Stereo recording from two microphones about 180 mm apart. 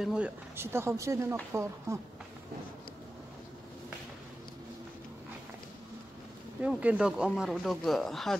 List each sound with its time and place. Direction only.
0.0 s speech: 5° right (ahead or behind)
6.6 s speech: 10° right (ahead or behind)